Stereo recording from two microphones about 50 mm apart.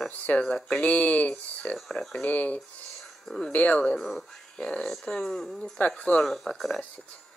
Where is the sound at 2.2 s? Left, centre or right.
Left.